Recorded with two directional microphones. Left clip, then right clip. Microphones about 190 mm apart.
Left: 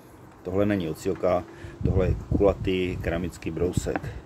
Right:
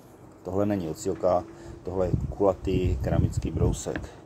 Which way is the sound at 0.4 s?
15° left (ahead or behind).